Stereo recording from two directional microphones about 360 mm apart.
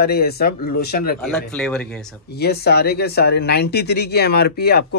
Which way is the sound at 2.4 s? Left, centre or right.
Left.